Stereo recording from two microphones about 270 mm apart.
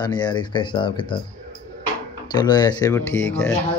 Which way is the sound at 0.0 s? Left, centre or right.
Centre.